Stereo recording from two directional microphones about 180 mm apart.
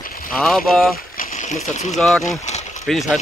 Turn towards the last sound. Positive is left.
turn(degrees=0)  # may be behind; listen again after turning